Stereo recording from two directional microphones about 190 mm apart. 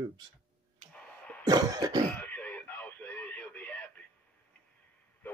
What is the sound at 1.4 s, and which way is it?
Cough, 20° right (ahead or behind).